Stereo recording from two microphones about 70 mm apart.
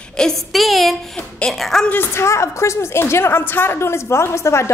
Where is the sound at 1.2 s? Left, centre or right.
Centre.